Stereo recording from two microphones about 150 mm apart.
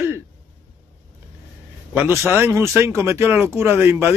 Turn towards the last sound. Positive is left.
turn(degrees=-15)  # may be behind; listen again after turning